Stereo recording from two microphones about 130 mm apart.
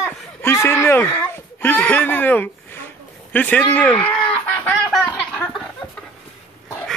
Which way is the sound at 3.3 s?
10° left (ahead or behind).